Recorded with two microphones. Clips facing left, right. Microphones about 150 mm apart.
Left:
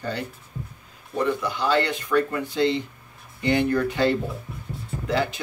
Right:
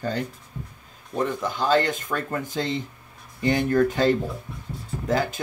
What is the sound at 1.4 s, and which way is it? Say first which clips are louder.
Speech: right 1 dB; 45° right (ahead or behind).